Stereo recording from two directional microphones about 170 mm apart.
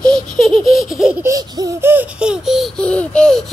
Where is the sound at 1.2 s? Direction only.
20° right (ahead or behind); by 3.4 s 5° left (ahead or behind).